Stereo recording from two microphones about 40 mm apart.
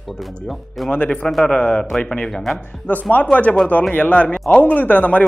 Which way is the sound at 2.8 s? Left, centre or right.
Left.